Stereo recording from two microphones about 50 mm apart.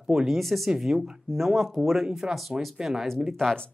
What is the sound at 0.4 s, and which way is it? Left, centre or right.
Speech, centre.